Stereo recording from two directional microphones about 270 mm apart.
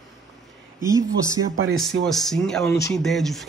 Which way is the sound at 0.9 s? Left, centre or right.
Centre.